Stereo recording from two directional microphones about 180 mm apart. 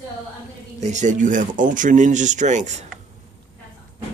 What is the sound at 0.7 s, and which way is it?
Speech, 40° right (ahead or behind).